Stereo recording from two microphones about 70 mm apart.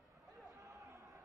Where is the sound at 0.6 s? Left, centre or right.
Right.